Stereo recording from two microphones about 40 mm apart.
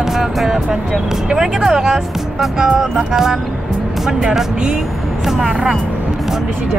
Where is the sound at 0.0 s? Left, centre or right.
Centre.